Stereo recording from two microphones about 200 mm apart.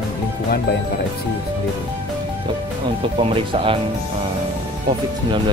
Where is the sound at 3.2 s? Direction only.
30° right (ahead or behind).